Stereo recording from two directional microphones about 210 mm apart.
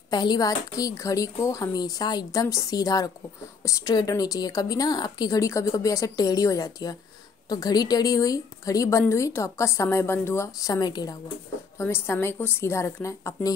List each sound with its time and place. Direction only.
0.1 s a woman's voice: 20° left (ahead or behind)